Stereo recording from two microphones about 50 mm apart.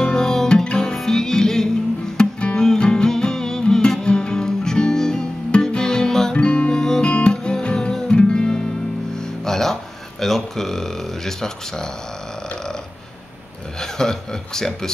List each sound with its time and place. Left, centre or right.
0.0 s music: centre
6.3 s music: left; by 9.8 s centre
10.2 s a sound: centre
13.7 s a man's voice: centre